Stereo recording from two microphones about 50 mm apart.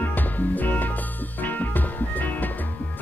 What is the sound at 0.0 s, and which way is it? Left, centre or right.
Music, left.